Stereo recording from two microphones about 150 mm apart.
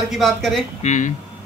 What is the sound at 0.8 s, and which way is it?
Speech, 50° left (ahead or behind).